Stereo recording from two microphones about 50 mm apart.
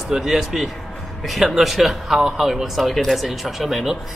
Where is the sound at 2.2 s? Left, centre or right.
Centre.